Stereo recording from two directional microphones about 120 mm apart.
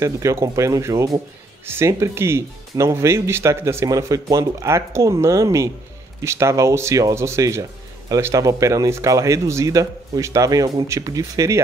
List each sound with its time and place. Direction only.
0.0 s speech: 25° right (ahead or behind)